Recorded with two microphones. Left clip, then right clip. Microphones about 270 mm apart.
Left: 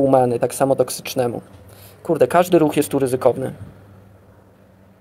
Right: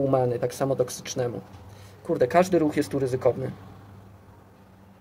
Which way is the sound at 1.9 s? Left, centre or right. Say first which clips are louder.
Left 7 dB; centre.